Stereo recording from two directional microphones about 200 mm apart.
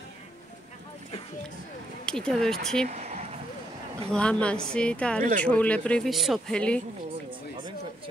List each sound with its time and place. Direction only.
2.0 s speech: 5° left (ahead or behind)
2.9 s a sound: 35° right (ahead or behind)
4.1 s speech: 5° left (ahead or behind)